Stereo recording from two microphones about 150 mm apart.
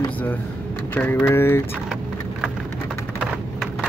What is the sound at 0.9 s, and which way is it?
Speech, 15° left (ahead or behind).